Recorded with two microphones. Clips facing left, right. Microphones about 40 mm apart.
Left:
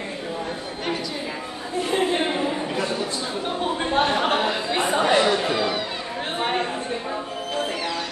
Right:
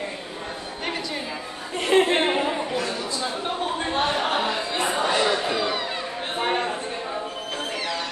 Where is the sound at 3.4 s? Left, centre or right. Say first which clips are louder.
Left 1 dB; centre.